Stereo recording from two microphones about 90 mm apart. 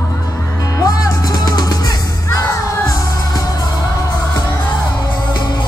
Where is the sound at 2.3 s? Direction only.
35° left (ahead or behind).